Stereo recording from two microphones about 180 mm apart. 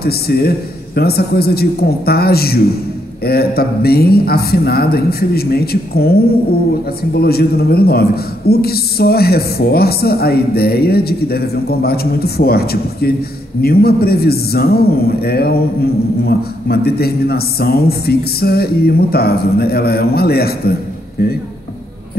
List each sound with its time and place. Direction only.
0.0 s a man's voice: 60° left (ahead or behind)